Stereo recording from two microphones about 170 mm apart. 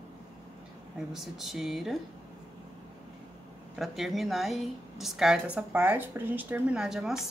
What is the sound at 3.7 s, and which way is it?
A woman's voice, centre (ahead or behind).